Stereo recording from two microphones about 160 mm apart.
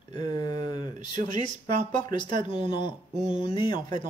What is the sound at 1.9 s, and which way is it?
Speech, 30° left (ahead or behind).